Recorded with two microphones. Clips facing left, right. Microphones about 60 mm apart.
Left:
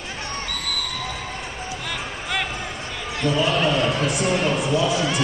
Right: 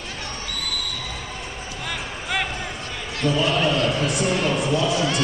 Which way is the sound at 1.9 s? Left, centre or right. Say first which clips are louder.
Right 2 dB; centre.